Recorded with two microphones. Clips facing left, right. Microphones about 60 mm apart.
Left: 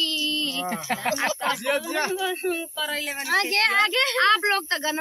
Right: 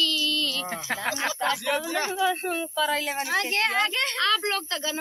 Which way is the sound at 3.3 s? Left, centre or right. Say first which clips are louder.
Left 5 dB; left.